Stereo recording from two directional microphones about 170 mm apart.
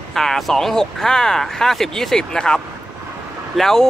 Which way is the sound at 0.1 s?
Centre (ahead or behind).